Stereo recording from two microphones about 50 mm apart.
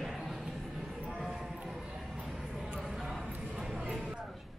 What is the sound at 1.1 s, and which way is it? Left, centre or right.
Clip-clop, centre.